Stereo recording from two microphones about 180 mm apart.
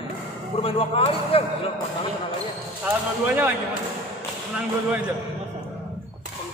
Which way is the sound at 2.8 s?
10° right (ahead or behind).